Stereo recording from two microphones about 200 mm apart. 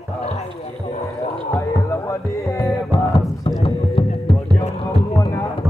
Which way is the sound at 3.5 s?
25° left (ahead or behind).